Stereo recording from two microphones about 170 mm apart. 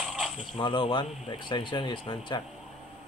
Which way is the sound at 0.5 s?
30° left (ahead or behind).